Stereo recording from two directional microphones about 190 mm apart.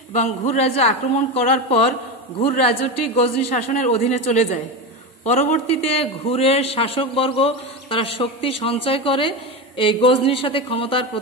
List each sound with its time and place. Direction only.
0.5 s a man's voice: 35° left (ahead or behind)